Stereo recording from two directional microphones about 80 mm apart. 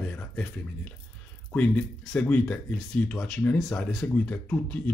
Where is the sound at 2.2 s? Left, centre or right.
Centre.